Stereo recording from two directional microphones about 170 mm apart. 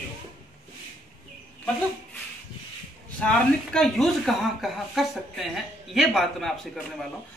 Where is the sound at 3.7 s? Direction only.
Centre (ahead or behind).